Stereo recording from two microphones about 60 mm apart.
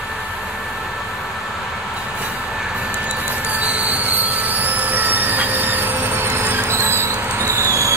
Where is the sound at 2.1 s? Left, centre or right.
Centre.